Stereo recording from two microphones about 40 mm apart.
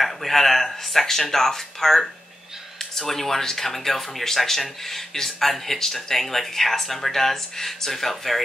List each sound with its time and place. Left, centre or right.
0.0 s speech: centre